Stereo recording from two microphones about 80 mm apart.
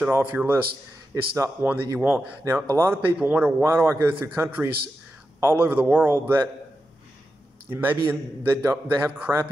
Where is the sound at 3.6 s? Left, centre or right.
Right.